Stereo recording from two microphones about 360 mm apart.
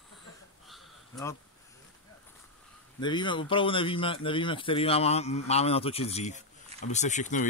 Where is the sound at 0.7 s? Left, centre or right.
Centre.